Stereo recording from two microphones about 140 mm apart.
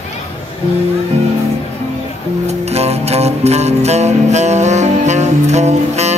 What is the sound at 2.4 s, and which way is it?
Music, 50° right (ahead or behind).